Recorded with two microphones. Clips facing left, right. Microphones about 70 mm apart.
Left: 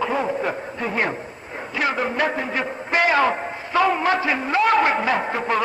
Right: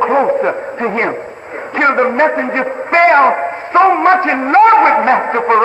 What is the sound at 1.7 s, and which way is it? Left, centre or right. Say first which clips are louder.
A man's voice: right 11 dB; right.